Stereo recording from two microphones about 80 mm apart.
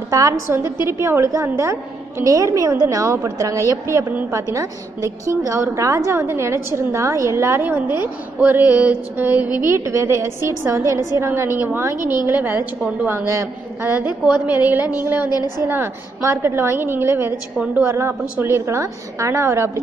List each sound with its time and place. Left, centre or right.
0.1 s a woman's voice: right; by 9.6 s centre
9.6 s a woman's voice: right
14.2 s a woman's voice: centre
15.2 s a woman's voice: left
15.7 s a woman's voice: right